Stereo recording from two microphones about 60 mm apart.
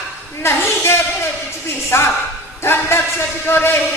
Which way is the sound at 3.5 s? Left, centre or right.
Left.